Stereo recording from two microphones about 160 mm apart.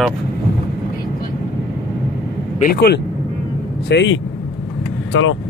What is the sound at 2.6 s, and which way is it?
Speech, 75° left (ahead or behind).